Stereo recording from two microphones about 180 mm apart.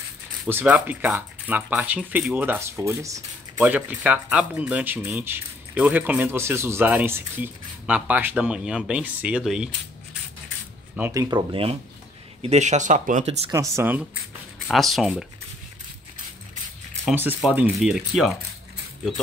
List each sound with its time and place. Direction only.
0.5 s speech: 10° right (ahead or behind)
11.0 s speech: 15° right (ahead or behind)
12.4 s speech: 40° right (ahead or behind)
13.5 s speech: 15° right (ahead or behind)
14.7 s speech: centre (ahead or behind)
17.1 s speech: 10° right (ahead or behind)